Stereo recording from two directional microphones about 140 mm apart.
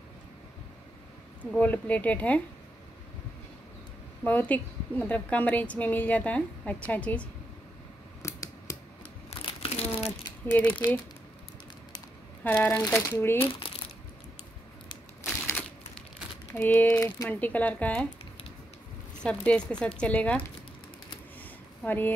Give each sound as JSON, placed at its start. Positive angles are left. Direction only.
{"t": 1.4, "sound": "a woman's voice", "side_deg": 10}
{"t": 4.2, "sound": "a woman's voice", "side_deg": 10}
{"t": 8.2, "sound": "scissors", "side_deg": 20}
{"t": 9.4, "sound": "crumpling", "side_deg": 40}
{"t": 10.4, "sound": "a woman's voice", "side_deg": 15}
{"t": 12.4, "sound": "a woman's voice", "side_deg": 15}
{"t": 13.4, "sound": "crumpling", "side_deg": 40}
{"t": 15.2, "sound": "typewriter", "side_deg": 15}
{"t": 16.5, "sound": "a woman's voice", "side_deg": 10}
{"t": 19.2, "sound": "a woman's voice", "side_deg": 10}
{"t": 21.8, "sound": "a woman's voice", "side_deg": 15}